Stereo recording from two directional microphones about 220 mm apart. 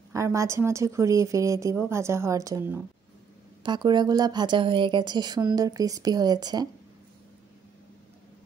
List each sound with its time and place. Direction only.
0.1 s speech: 15° right (ahead or behind)